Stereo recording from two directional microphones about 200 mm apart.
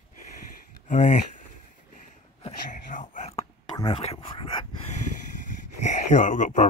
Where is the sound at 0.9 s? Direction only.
35° left (ahead or behind).